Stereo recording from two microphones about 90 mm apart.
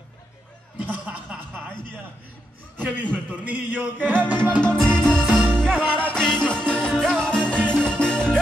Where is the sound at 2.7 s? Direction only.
15° right (ahead or behind).